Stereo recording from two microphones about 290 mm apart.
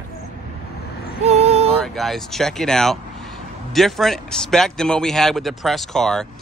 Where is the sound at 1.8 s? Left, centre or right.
Centre.